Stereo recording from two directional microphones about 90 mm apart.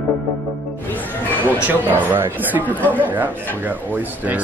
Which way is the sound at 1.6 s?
20° right (ahead or behind).